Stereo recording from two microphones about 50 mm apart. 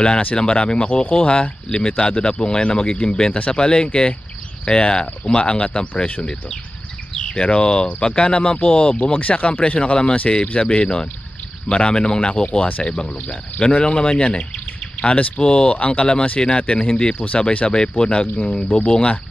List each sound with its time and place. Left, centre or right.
0.4 s speech: centre
17.2 s speech: left
17.6 s speech: centre